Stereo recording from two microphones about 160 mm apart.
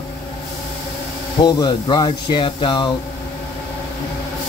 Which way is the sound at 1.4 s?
25° left (ahead or behind).